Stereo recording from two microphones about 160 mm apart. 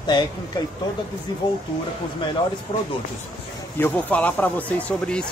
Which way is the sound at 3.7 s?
10° left (ahead or behind).